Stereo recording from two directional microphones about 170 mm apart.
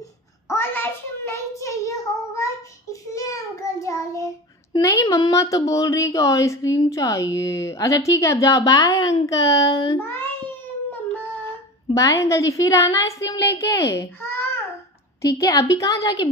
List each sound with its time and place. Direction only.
0.5 s child singing: 15° left (ahead or behind)
4.7 s a woman's voice: 20° left (ahead or behind)
9.9 s a child's voice: 15° left (ahead or behind)
11.9 s a woman's voice: 20° left (ahead or behind)